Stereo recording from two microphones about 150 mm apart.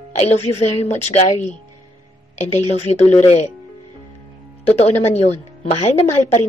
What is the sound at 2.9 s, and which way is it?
Speech, 45° left (ahead or behind).